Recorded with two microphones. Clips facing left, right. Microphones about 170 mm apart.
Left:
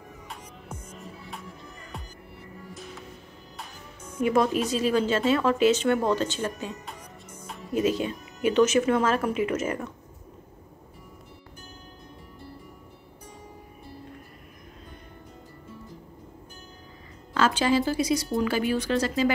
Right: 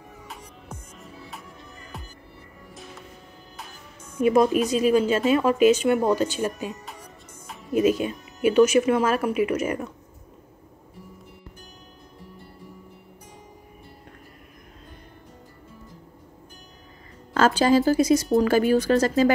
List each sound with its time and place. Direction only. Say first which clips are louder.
0.7 s music: left 3 dB; centre (ahead or behind)
4.2 s speech: right 4 dB; 20° right (ahead or behind)
7.7 s speech: right 4 dB; 15° right (ahead or behind)
17.3 s a woman's voice: right 4 dB; 45° right (ahead or behind)